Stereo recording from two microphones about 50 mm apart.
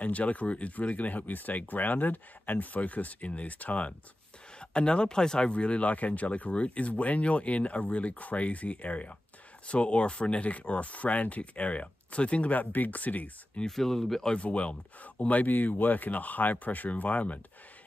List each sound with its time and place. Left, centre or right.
0.0 s speech: left
4.6 s speech: centre
13.7 s speech: centre
14.3 s speech: left